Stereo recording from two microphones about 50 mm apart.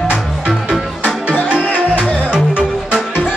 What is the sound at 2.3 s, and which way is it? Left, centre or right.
Music, right.